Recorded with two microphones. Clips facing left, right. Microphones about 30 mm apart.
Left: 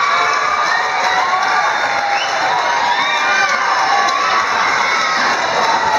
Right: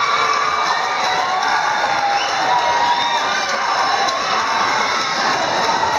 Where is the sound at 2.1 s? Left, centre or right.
Centre.